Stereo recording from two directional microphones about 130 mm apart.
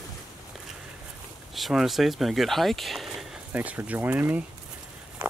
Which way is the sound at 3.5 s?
10° right (ahead or behind).